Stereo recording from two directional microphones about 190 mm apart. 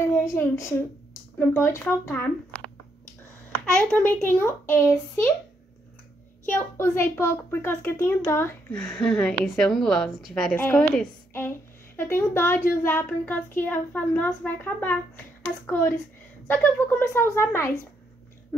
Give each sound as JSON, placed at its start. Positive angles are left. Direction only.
{"t": 0.0, "sound": "a woman's voice", "side_deg": 15}
{"t": 3.9, "sound": "a child's voice", "side_deg": 10}
{"t": 6.5, "sound": "a child's voice", "side_deg": 15}